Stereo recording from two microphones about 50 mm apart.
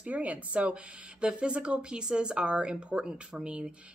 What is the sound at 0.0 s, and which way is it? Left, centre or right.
Speech, right.